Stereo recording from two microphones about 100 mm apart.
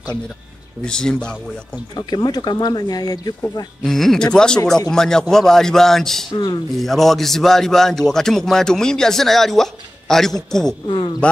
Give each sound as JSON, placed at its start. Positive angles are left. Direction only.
{"t": 0.8, "sound": "speech", "side_deg": 10}
{"t": 2.0, "sound": "speech", "side_deg": 45}
{"t": 3.8, "sound": "a man's voice", "side_deg": 5}
{"t": 6.3, "sound": "speech", "side_deg": 45}
{"t": 6.8, "sound": "a man's voice", "side_deg": 0}